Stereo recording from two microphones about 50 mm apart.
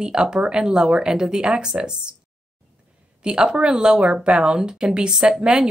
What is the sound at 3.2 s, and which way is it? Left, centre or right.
Speech, centre.